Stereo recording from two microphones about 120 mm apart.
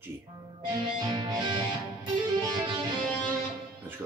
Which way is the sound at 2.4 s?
30° right (ahead or behind).